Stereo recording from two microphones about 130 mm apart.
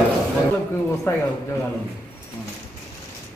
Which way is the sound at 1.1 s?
20° left (ahead or behind).